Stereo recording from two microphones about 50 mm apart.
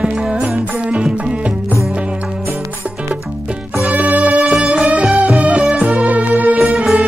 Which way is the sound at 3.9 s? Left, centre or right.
Right.